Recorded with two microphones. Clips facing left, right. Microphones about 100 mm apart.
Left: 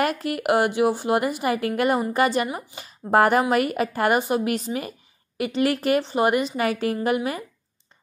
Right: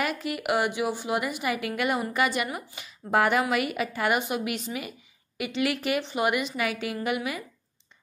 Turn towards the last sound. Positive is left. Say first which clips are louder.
# left 5 dB
turn(degrees=40)  # may be behind; listen again after turning